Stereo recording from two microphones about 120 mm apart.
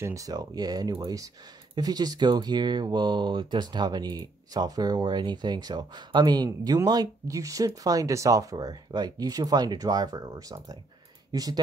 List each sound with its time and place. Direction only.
0.0 s speech: 25° right (ahead or behind)